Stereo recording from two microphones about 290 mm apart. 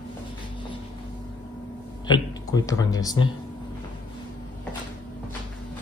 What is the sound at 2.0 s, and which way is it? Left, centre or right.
Speech, centre.